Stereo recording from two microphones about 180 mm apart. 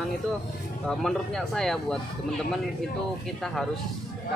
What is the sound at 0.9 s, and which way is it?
Speech, centre (ahead or behind).